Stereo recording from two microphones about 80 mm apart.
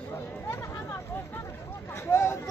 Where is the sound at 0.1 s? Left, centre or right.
Left.